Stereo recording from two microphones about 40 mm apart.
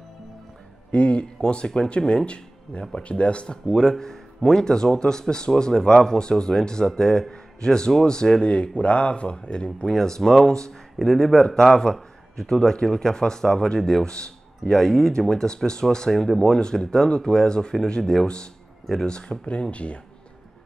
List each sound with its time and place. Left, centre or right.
0.9 s speech: left
3.6 s speech: centre
9.8 s a man's voice: centre
11.3 s speech: centre
14.6 s speech: centre
19.7 s speech: left